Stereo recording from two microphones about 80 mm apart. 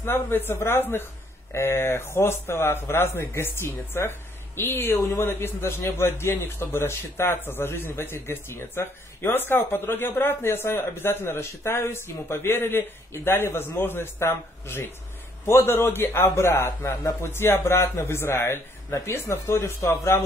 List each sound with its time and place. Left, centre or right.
0.0 s a man's voice: left